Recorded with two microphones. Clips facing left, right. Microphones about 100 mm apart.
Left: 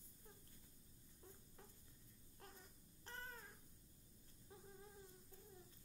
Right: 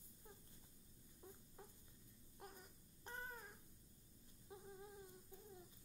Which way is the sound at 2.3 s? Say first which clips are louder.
Right 4 dB; 15° right (ahead or behind).